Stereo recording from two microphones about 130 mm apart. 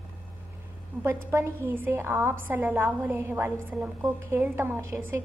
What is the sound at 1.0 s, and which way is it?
A woman's voice, 20° right (ahead or behind).